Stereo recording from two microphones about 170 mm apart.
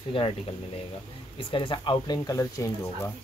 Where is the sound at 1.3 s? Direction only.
30° left (ahead or behind).